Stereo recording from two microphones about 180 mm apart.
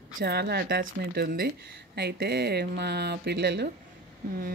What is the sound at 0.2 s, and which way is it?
Speech, 65° right (ahead or behind).